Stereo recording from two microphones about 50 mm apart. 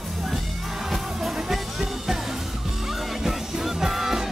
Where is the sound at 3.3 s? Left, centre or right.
Centre.